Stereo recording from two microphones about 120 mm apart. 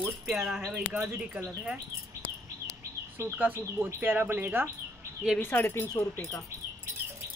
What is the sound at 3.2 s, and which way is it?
Speech, 15° right (ahead or behind).